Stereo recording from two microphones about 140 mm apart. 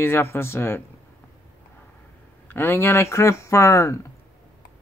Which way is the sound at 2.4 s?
20° left (ahead or behind).